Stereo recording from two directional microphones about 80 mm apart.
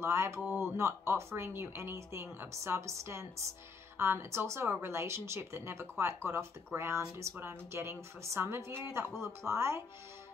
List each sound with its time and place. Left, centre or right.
0.0 s speech: right